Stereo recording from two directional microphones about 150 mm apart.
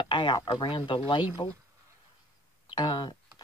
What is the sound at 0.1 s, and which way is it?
Speech, 30° left (ahead or behind).